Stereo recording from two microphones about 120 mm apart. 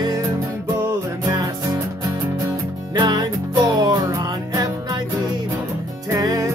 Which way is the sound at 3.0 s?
35° right (ahead or behind).